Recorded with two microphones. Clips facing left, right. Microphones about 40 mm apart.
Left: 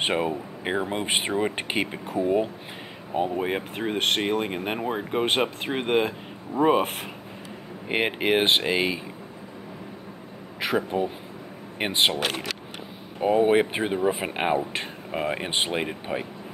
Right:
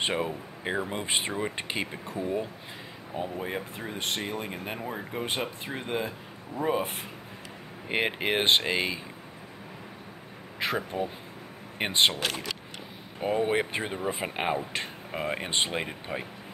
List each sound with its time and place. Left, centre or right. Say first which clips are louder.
0.0 s speech: left 4 dB; left
4.2 s speech: left 8 dB; left
7.9 s speech: left 4 dB; centre
10.8 s speech: left 5 dB; centre
12.1 s speech: left 4 dB; left
13.4 s speech: left 7 dB; centre